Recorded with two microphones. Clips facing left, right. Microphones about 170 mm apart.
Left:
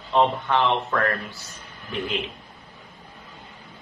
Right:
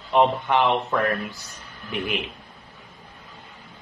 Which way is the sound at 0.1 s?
15° right (ahead or behind).